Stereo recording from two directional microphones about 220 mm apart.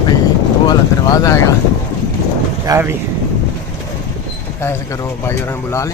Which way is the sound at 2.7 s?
10° right (ahead or behind).